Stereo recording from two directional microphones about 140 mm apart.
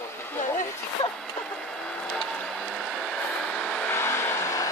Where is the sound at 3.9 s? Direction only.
20° left (ahead or behind).